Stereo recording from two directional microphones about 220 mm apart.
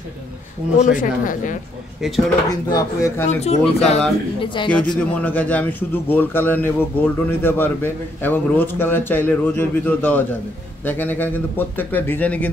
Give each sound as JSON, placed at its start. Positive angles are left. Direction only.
{"t": 0.7, "sound": "speech", "side_deg": 35}
{"t": 2.0, "sound": "speech", "side_deg": 0}
{"t": 2.7, "sound": "a man's voice", "side_deg": 15}
{"t": 3.3, "sound": "speech", "side_deg": 30}
{"t": 4.8, "sound": "a man's voice", "side_deg": 5}